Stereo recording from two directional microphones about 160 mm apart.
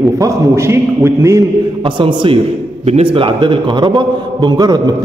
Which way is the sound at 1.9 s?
30° right (ahead or behind).